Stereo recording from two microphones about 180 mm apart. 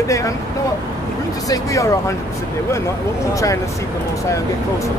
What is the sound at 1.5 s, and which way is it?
Speech, 15° left (ahead or behind).